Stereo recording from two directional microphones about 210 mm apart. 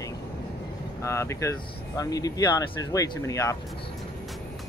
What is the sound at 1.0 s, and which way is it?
Speech, 15° left (ahead or behind).